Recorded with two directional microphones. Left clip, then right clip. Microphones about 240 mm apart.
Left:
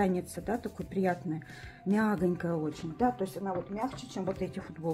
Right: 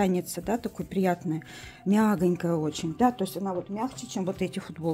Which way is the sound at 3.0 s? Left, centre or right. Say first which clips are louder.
Right 4 dB; right.